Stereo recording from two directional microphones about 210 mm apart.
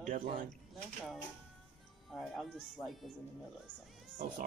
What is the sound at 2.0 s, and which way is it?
Speech, centre (ahead or behind).